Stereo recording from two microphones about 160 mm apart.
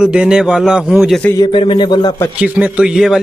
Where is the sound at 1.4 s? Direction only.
30° left (ahead or behind).